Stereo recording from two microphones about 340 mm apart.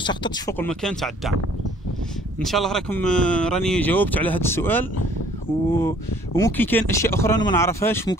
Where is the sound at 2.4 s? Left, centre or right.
Centre.